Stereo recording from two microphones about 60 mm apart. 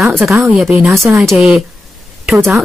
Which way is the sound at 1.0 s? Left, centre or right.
Right.